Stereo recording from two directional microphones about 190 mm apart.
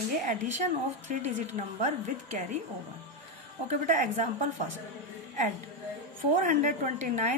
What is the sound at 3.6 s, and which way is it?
Speech, 40° right (ahead or behind).